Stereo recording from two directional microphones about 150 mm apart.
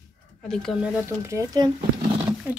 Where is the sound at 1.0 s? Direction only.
20° right (ahead or behind).